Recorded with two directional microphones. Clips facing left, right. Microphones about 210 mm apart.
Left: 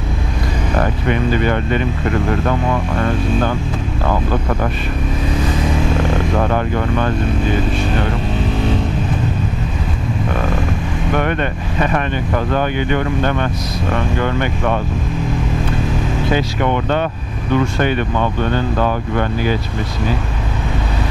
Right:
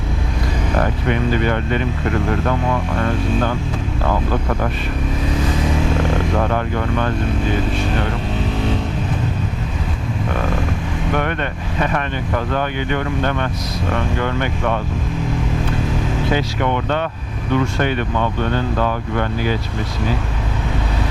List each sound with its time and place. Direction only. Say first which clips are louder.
0.7 s speech: left 2 dB; 15° left (ahead or behind)
5.9 s speech: left 1 dB; 15° left (ahead or behind)
10.3 s speech: even; 15° left (ahead or behind)
16.3 s speech: left 3 dB; 10° left (ahead or behind)
18.1 s speech: left 2 dB; 25° left (ahead or behind)
18.5 s speech: left 2 dB; 15° left (ahead or behind)